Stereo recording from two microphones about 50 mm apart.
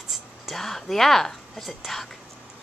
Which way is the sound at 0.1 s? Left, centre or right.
Centre.